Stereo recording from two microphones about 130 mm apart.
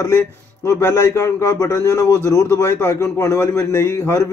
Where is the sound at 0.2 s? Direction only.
20° left (ahead or behind).